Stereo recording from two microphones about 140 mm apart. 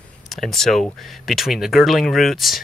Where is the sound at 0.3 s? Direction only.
Centre (ahead or behind).